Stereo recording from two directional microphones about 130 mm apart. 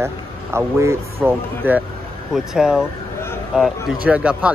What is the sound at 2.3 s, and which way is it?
Speech, 5° right (ahead or behind).